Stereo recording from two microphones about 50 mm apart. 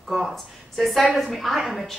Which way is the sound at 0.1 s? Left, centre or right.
Centre.